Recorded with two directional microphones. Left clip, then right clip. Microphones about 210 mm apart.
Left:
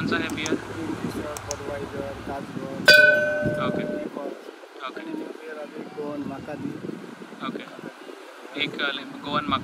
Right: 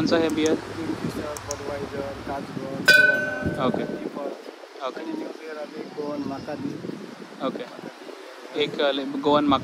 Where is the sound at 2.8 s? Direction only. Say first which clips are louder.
Left 2 dB; 5° right (ahead or behind).